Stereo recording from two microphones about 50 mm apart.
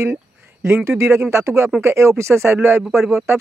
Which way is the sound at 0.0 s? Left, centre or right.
Right.